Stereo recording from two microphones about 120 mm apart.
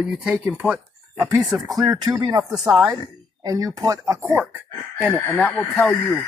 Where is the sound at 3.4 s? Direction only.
30° right (ahead or behind).